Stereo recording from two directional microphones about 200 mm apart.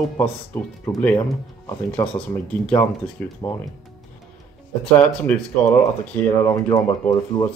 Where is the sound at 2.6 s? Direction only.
10° left (ahead or behind).